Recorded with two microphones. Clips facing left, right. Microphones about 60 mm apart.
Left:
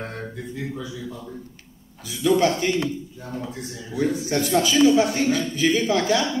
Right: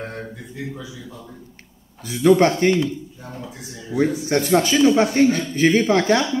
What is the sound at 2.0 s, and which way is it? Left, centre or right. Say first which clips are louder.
Speech: right 5 dB; right.